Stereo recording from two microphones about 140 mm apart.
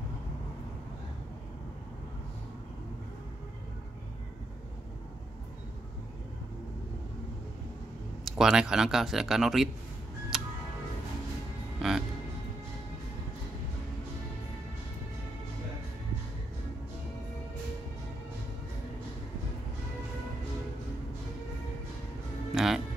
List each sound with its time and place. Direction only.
8.3 s speech: 5° right (ahead or behind)
10.3 s music: 5° right (ahead or behind)
11.8 s music: centre (ahead or behind)
22.5 s music: centre (ahead or behind)